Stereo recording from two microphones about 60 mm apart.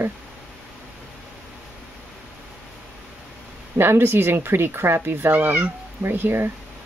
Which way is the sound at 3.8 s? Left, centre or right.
Right.